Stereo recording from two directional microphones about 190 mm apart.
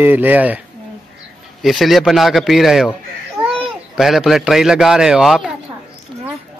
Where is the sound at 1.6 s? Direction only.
Centre (ahead or behind).